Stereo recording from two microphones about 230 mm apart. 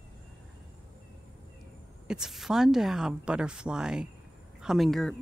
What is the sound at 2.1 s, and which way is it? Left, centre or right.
Speech, centre.